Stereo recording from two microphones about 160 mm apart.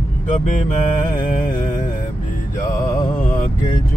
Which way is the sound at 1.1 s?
55° left (ahead or behind).